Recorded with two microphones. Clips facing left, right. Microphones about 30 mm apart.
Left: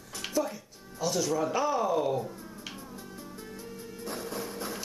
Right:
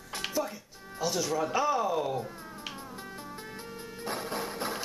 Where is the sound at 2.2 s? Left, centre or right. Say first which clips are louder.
Even; right.